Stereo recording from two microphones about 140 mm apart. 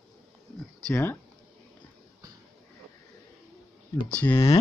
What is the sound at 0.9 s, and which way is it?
Speech, 15° left (ahead or behind).